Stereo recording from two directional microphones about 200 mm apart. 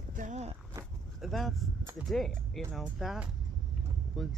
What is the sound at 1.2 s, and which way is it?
Speech, centre (ahead or behind).